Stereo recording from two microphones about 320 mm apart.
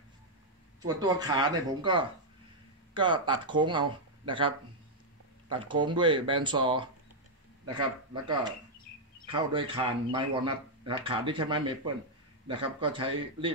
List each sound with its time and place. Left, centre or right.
0.8 s a man's voice: centre